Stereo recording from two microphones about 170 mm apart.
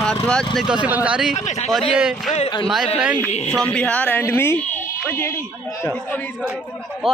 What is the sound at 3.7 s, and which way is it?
Speech, 5° left (ahead or behind).